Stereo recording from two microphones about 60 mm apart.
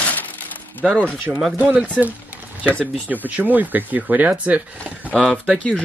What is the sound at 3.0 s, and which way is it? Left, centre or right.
Speech, right.